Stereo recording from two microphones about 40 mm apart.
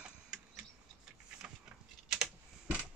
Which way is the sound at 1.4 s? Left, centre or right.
Centre.